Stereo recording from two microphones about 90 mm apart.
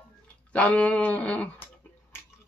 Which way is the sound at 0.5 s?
15° left (ahead or behind).